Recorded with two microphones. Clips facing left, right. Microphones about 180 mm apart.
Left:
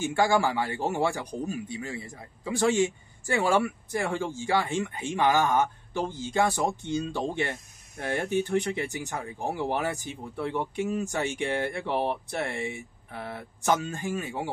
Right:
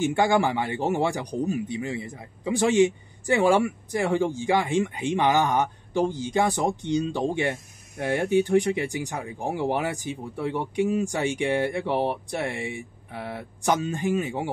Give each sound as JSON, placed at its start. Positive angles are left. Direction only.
{"t": 0.0, "sound": "a man's voice", "side_deg": -20}